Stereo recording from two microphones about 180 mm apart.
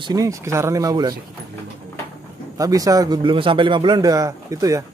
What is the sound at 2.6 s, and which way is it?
Speech, 20° right (ahead or behind).